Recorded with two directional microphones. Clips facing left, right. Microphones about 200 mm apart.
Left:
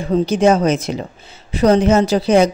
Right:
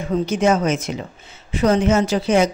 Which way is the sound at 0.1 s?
35° left (ahead or behind).